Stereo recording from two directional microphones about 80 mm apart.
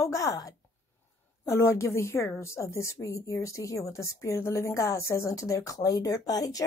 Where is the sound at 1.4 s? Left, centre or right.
Left.